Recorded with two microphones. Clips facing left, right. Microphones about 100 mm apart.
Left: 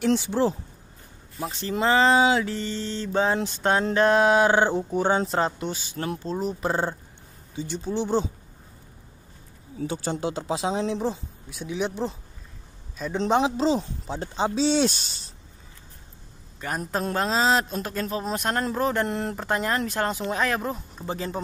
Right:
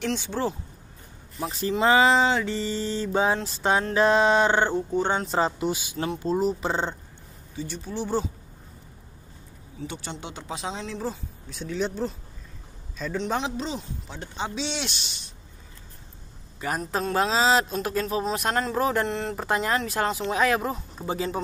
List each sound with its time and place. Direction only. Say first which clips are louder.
0.0 s a sound: left 5 dB; 15° left (ahead or behind)
1.5 s speech: right 2 dB; centre (ahead or behind)
3.9 s a sound: left 1 dB; centre (ahead or behind)
5.2 s speech: right 1 dB; centre (ahead or behind)
7.5 s speech: left 4 dB; 25° left (ahead or behind)
10.2 s speech: left 7 dB; 30° left (ahead or behind)
11.5 s a sound: even; 10° left (ahead or behind)
13.1 s speech: left 6 dB; 25° left (ahead or behind)
16.8 s speech: right 1 dB; 5° left (ahead or behind)